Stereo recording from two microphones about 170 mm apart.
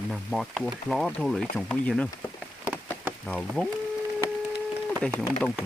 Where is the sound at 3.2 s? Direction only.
5° left (ahead or behind).